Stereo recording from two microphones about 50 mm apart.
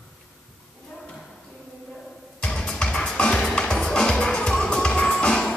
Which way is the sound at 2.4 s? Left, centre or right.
Left.